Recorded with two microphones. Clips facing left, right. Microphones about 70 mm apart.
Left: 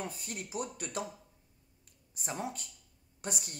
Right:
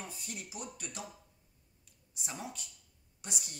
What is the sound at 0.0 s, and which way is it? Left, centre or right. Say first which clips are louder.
Speech: left 5 dB; left.